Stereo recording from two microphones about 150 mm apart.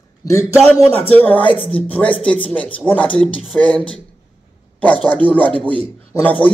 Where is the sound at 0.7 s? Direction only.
15° left (ahead or behind).